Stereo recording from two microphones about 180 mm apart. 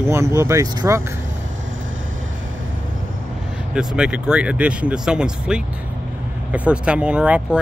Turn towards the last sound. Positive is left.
turn(degrees=-5)  # may be behind; listen again after turning